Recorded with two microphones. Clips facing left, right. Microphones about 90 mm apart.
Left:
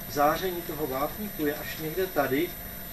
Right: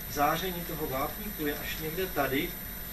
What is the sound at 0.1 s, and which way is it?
Speech, 10° left (ahead or behind).